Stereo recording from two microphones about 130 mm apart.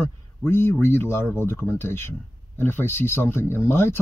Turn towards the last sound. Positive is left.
turn(degrees=20)  # may be behind; listen again after turning